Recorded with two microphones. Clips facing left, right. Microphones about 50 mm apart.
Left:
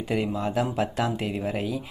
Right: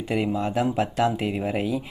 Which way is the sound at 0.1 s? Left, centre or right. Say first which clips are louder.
Right 2 dB; centre.